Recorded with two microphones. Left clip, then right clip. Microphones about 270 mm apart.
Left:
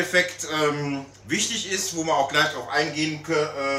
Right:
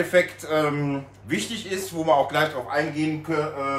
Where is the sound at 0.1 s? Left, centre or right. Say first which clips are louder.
Right 2 dB; centre.